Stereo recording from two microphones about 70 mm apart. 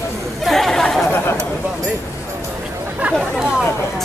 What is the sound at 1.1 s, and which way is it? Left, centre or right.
Speech, left.